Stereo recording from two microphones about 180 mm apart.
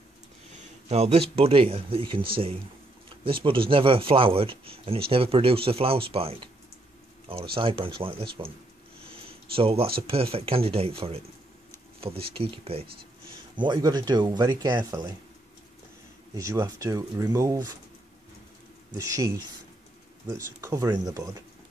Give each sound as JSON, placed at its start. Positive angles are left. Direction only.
{"t": 0.8, "sound": "speech", "side_deg": -35}
{"t": 9.1, "sound": "a sound", "side_deg": -30}
{"t": 9.9, "sound": "speech", "side_deg": -30}
{"t": 16.3, "sound": "speech", "side_deg": -20}
{"t": 19.0, "sound": "speech", "side_deg": -20}
{"t": 20.6, "sound": "speech", "side_deg": -15}